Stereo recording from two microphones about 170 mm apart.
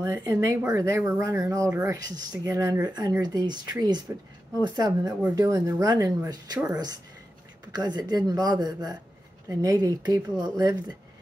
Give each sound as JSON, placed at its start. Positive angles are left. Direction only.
{"t": 0.0, "sound": "speech", "side_deg": -20}